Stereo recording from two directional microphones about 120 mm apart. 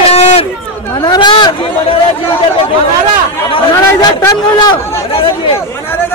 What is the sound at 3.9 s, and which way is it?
Speech, 35° left (ahead or behind).